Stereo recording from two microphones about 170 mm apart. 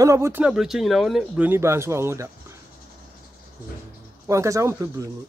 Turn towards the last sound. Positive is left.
turn(degrees=-20)  # may be behind; listen again after turning